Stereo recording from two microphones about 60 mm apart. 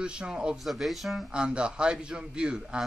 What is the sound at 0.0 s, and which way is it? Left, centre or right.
Speech, centre.